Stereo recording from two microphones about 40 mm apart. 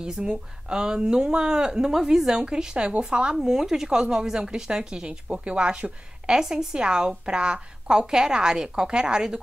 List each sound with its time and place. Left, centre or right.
0.0 s a woman's voice: centre
3.3 s a woman's voice: centre
5.3 s a woman's voice: right
6.3 s a woman's voice: centre